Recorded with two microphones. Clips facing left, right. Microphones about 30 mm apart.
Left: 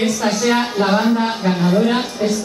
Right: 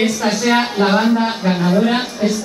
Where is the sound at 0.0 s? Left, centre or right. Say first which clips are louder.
Right 1 dB; centre.